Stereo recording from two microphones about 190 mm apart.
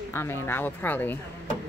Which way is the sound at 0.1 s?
10° left (ahead or behind).